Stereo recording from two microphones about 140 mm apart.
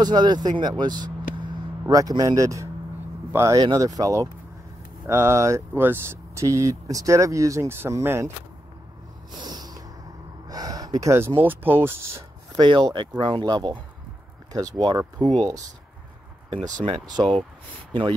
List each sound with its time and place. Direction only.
0.0 s speech: 30° right (ahead or behind)
9.3 s snort: 30° right (ahead or behind)
10.5 s speech: 25° right (ahead or behind)
12.5 s speech: 30° right (ahead or behind)
17.1 s speech: 30° right (ahead or behind)